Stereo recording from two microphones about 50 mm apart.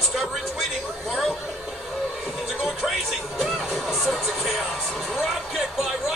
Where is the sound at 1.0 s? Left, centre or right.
Centre.